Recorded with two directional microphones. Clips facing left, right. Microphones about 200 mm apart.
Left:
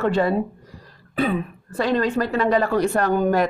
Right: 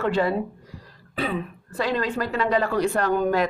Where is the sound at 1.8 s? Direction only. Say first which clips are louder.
Left 4 dB; 50° left (ahead or behind).